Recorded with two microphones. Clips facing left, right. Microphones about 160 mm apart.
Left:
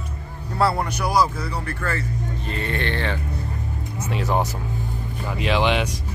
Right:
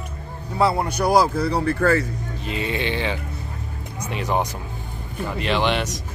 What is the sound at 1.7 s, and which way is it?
Speech, 40° right (ahead or behind).